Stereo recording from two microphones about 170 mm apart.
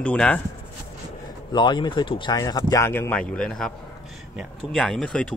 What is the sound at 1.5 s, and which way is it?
A man's voice, 25° left (ahead or behind).